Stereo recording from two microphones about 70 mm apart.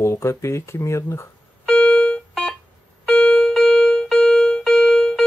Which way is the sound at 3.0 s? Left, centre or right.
Centre.